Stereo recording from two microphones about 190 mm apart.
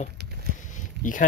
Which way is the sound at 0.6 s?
40° left (ahead or behind).